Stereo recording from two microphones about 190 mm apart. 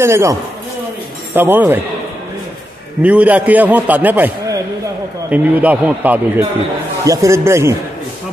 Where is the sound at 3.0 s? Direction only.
5° right (ahead or behind).